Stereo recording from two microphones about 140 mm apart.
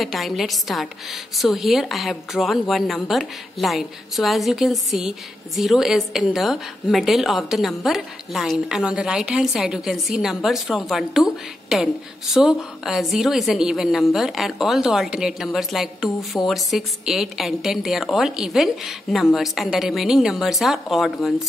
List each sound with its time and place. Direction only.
0.0 s a woman's voice: centre (ahead or behind)